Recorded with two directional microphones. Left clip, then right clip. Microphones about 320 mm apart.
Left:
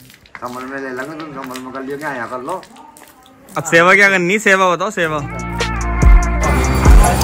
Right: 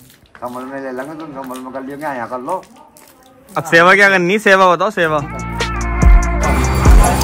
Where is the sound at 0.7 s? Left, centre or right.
Right.